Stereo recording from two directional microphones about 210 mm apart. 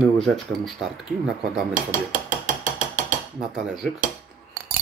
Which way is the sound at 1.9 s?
40° right (ahead or behind).